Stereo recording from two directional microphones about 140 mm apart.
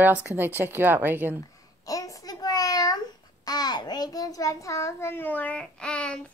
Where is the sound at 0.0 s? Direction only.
10° right (ahead or behind).